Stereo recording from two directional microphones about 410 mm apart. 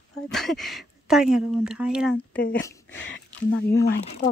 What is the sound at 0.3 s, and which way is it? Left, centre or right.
A woman's voice, centre.